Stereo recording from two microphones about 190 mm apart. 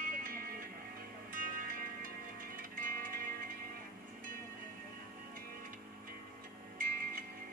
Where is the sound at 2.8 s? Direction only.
50° right (ahead or behind).